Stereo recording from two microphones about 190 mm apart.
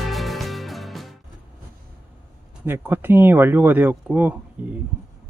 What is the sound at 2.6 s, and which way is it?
Speech, 10° right (ahead or behind).